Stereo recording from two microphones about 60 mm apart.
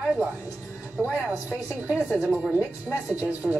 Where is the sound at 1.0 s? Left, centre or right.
Right.